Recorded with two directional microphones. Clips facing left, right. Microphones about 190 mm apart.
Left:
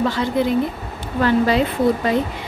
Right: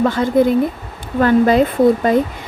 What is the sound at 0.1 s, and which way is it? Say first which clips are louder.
A woman's voice: right 5 dB; 50° right (ahead or behind).